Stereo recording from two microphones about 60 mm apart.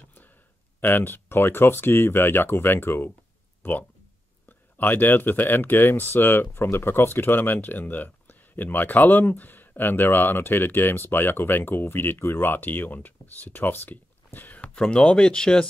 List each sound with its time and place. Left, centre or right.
0.7 s speech: left
4.5 s speech: left; by 15.6 s centre